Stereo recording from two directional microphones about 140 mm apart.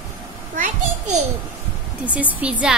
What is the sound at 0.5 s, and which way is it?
Children playing, 65° right (ahead or behind).